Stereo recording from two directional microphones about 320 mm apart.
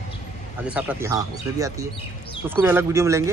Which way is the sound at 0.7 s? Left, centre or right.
Centre.